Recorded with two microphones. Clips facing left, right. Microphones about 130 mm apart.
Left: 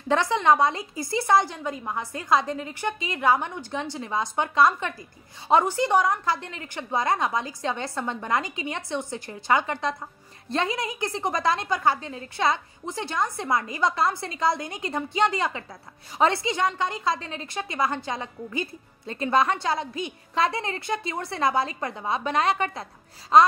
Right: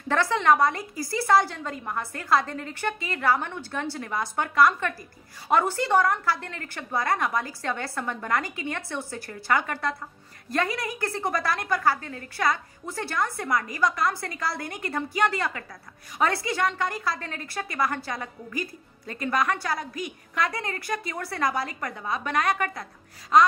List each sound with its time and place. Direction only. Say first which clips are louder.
0.1 s a woman's voice: left 1 dB; 15° left (ahead or behind)